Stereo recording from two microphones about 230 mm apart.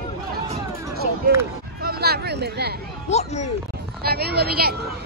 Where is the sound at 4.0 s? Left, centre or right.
Right.